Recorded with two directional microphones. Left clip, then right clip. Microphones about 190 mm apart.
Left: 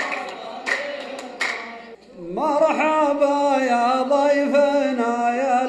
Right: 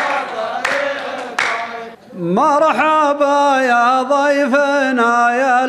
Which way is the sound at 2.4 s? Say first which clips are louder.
Right 6 dB; 20° right (ahead or behind).